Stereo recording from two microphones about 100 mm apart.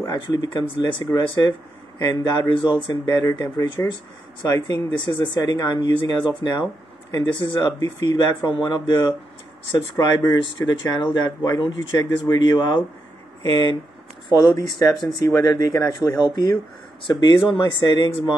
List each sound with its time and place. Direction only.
0.0 s speech: 45° left (ahead or behind)
3.6 s speech: 50° left (ahead or behind)